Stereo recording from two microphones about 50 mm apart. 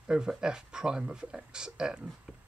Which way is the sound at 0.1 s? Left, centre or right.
Centre.